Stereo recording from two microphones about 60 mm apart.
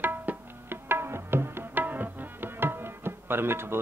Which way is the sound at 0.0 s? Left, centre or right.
Right.